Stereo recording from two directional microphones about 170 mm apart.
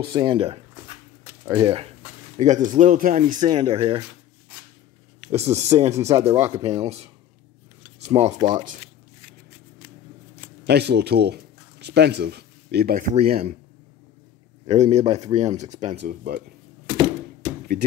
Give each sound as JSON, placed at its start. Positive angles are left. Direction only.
{"t": 0.0, "sound": "speech", "side_deg": -25}
{"t": 2.3, "sound": "speech", "side_deg": -45}
{"t": 3.5, "sound": "speech", "side_deg": -30}
{"t": 5.3, "sound": "speech", "side_deg": -40}
{"t": 8.1, "sound": "speech", "side_deg": -40}
{"t": 8.4, "sound": "speech", "side_deg": -25}
{"t": 10.6, "sound": "speech", "side_deg": -75}
{"t": 14.7, "sound": "speech", "side_deg": -40}
{"t": 16.0, "sound": "speech", "side_deg": -70}
{"t": 16.8, "sound": "typewriter", "side_deg": -25}